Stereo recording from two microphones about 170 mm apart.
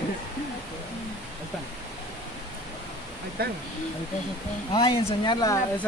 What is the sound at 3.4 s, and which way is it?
Speech, 65° right (ahead or behind).